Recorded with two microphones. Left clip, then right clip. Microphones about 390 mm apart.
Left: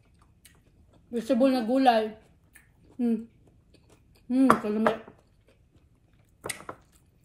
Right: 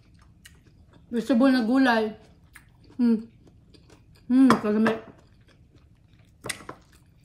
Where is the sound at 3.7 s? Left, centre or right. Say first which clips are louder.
Right 5 dB; centre.